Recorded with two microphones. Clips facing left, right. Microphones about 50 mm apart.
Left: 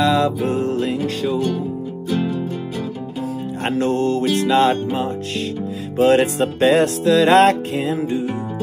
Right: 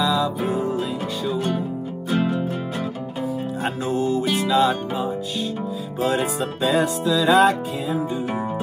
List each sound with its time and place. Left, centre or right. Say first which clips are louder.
0.0 s music: left 4 dB; left
2.0 s music: even; centre
3.8 s music: left 4 dB; left
6.0 s music: left 7 dB; left